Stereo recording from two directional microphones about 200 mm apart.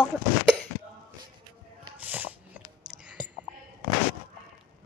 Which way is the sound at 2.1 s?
10° right (ahead or behind).